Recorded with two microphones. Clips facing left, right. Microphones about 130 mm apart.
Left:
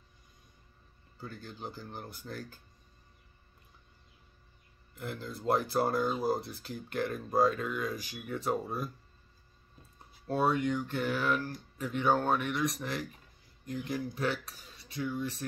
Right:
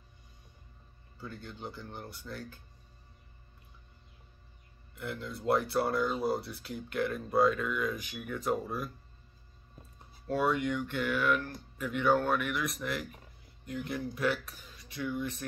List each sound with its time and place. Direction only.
1.2 s speech: 40° left (ahead or behind)
4.9 s speech: 35° left (ahead or behind)
10.2 s speech: 30° left (ahead or behind)